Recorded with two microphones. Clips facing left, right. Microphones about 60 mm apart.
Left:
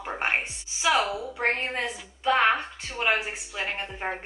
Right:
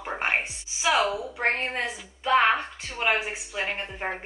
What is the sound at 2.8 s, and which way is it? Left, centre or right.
Speech, right.